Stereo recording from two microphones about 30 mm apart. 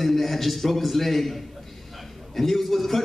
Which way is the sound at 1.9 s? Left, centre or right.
Centre.